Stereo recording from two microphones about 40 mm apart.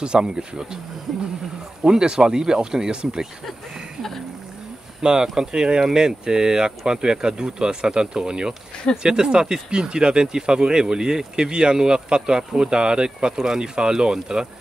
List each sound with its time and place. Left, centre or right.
0.0 s speech: right
1.8 s speech: right
5.2 s speech: centre